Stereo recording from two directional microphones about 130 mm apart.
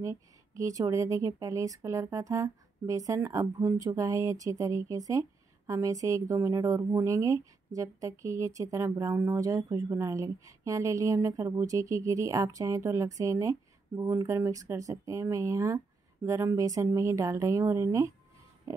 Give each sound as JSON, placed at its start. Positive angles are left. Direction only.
{"t": 0.0, "sound": "speech", "side_deg": -25}
{"t": 18.7, "sound": "pig", "side_deg": -25}